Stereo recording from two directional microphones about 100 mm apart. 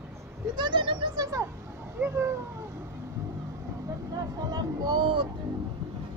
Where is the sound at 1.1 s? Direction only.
40° right (ahead or behind).